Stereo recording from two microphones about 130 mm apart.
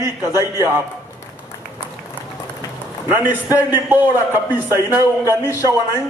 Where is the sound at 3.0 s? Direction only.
15° right (ahead or behind).